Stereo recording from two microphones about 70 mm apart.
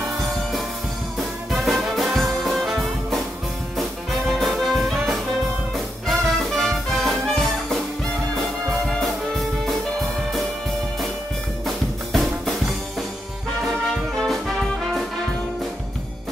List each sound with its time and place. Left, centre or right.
1.1 s music: centre
8.9 s music: centre
11.6 s music: centre
14.1 s music: centre